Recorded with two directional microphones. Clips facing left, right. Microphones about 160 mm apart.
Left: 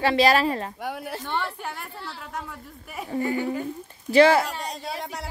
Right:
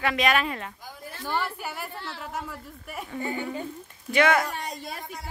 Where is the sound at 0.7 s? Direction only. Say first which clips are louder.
Left 10 dB; 70° left (ahead or behind).